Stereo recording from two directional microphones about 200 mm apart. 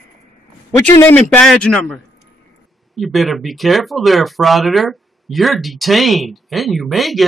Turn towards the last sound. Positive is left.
turn(degrees=0)  # may be behind; listen again after turning